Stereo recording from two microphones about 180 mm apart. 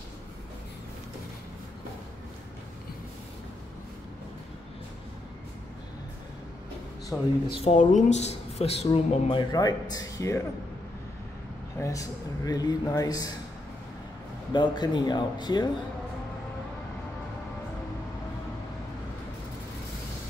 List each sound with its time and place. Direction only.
7.1 s speech: centre (ahead or behind)
7.6 s speech: 40° left (ahead or behind); by 10.4 s 15° left (ahead or behind)
11.8 s speech: 20° left (ahead or behind)
14.5 s speech: 25° left (ahead or behind)